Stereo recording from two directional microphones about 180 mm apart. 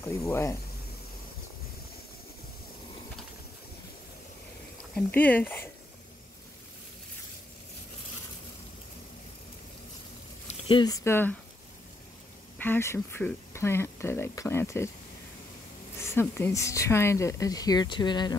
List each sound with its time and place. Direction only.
0.0 s speech: 15° left (ahead or behind)
4.9 s speech: 10° left (ahead or behind)
10.5 s speech: 25° left (ahead or behind)
12.5 s speech: 10° left (ahead or behind)
16.0 s speech: 15° left (ahead or behind)